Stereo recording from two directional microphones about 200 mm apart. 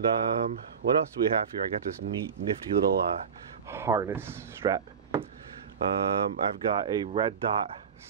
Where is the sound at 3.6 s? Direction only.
15° right (ahead or behind).